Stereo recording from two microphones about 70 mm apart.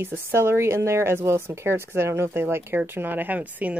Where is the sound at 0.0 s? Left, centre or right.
Right.